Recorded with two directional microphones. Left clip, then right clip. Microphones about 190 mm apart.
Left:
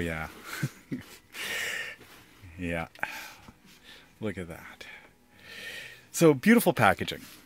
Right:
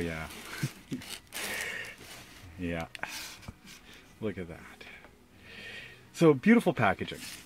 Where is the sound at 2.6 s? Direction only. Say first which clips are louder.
Left 3 dB; 45° left (ahead or behind).